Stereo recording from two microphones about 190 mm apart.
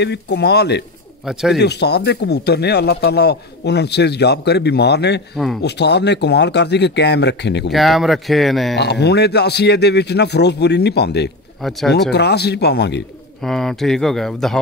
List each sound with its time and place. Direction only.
0.0 s speech: 65° left (ahead or behind)
1.2 s speech: 5° right (ahead or behind)
1.6 s speech: 60° left (ahead or behind)
7.7 s speech: centre (ahead or behind)
8.7 s speech: 60° left (ahead or behind)
11.6 s speech: centre (ahead or behind)
12.1 s speech: 60° left (ahead or behind)
13.4 s speech: 5° left (ahead or behind)